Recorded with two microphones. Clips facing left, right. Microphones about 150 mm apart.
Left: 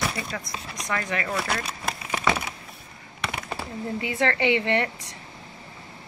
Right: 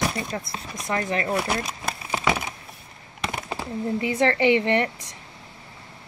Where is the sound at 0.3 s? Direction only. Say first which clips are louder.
Right 2 dB; 30° right (ahead or behind).